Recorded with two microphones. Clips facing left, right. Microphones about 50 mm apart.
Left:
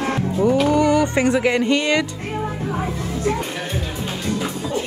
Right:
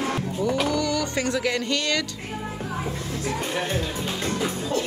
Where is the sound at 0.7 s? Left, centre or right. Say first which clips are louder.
Left 8 dB; left.